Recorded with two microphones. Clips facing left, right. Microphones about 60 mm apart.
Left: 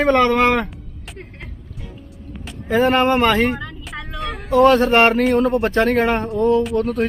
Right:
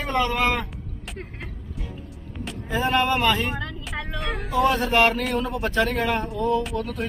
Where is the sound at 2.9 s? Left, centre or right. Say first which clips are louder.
Left 2 dB; left.